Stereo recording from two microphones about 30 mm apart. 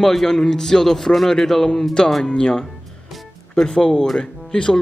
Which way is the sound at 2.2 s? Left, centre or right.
Left.